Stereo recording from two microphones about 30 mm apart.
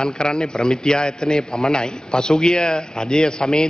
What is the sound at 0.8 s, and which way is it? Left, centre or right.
Speech, left.